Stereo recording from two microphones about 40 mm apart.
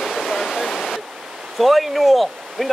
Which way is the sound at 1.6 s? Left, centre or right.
Centre.